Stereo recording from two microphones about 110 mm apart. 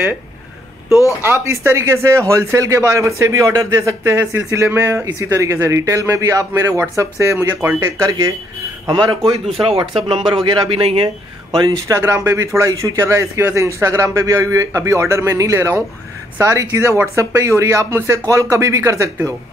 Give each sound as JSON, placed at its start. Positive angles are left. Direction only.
{"t": 1.2, "sound": "speech", "side_deg": -20}
{"t": 8.8, "sound": "speech", "side_deg": -45}
{"t": 9.5, "sound": "speech", "side_deg": -60}
{"t": 11.5, "sound": "speech", "side_deg": -35}